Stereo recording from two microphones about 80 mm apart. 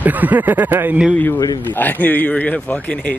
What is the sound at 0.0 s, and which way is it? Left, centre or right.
Speech, right.